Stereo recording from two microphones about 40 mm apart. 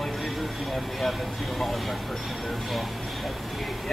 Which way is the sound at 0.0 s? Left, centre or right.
Centre.